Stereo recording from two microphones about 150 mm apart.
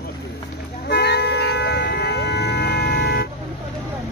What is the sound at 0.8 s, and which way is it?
Vehicle, 90° left.